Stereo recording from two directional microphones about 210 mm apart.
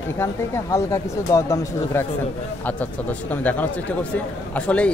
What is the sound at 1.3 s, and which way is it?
Speech, 15° left (ahead or behind).